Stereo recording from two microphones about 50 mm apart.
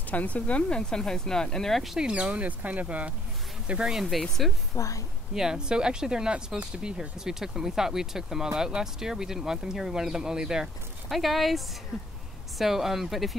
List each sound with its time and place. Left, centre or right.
0.1 s speech: left; by 1.9 s centre
2.0 s speech: right
4.0 s speech: centre
4.7 s a woman's voice: left
5.3 s speech: centre